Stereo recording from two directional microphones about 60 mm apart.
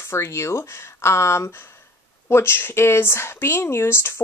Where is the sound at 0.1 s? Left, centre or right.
Left.